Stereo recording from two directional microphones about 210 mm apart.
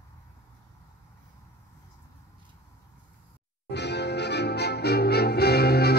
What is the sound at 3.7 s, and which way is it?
Music, 55° left (ahead or behind).